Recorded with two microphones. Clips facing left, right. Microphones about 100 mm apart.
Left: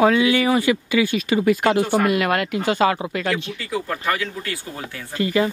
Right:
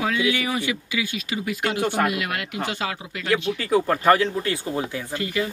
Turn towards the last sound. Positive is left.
turn(degrees=35)  # may be behind; listen again after turning